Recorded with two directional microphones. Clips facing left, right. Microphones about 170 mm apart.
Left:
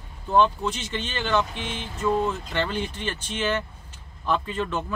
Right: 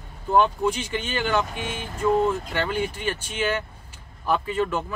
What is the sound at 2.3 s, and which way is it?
Speech, 10° right (ahead or behind).